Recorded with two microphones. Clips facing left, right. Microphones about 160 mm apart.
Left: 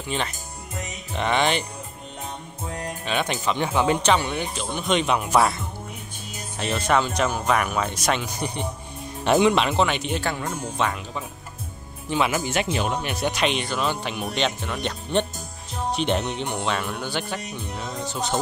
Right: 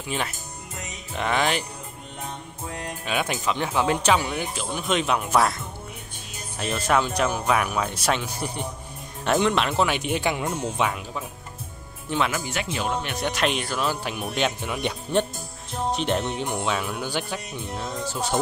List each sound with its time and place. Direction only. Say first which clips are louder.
0.1 s speech: left 1 dB; 5° right (ahead or behind)
3.1 s speech: left 1 dB; 5° right (ahead or behind)
6.6 s speech: left 1 dB; 5° right (ahead or behind)
12.1 s speech: left 2 dB; 5° left (ahead or behind)
12.4 s speech: left 4 dB; 25° left (ahead or behind)
13.0 s speech: left 1 dB; centre (ahead or behind)